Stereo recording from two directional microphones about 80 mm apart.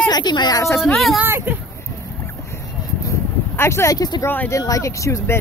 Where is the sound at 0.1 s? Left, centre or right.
Left.